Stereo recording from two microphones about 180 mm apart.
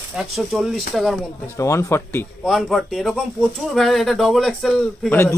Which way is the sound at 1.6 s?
15° left (ahead or behind).